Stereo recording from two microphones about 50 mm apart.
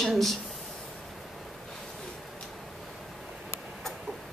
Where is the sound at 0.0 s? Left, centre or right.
Centre.